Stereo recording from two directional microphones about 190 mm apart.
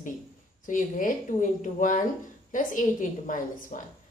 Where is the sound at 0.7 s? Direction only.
45° left (ahead or behind).